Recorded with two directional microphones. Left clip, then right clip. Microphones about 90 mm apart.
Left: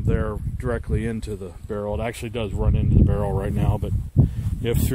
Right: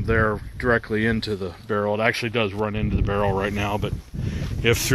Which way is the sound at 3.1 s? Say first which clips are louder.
Right 4 dB; 85° left.